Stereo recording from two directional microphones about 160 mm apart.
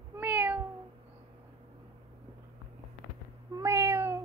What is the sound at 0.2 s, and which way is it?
Cat, 10° right (ahead or behind).